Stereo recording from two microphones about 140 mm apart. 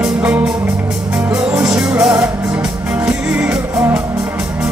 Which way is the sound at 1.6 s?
5° right (ahead or behind).